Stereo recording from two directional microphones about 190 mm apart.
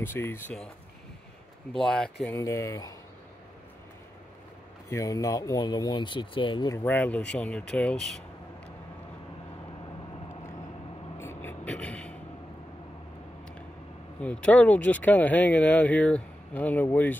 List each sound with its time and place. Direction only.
0.0 s speech: 10° left (ahead or behind)
1.7 s speech: 5° left (ahead or behind)
2.3 s speech: 15° left (ahead or behind)
4.8 s speech: 15° left (ahead or behind)
11.1 s vehicle: 10° left (ahead or behind)
14.2 s speech: 5° left (ahead or behind)